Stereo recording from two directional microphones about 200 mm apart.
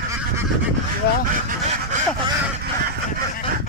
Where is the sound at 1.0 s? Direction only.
55° left (ahead or behind).